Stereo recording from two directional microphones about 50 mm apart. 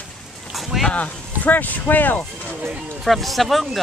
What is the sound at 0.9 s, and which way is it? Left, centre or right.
Speech, left.